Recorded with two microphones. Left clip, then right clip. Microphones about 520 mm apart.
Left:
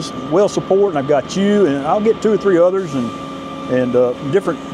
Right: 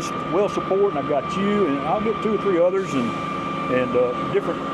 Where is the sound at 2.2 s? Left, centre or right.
Left.